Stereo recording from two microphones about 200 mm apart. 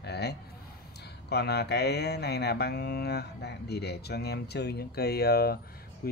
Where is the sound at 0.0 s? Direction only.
55° left (ahead or behind).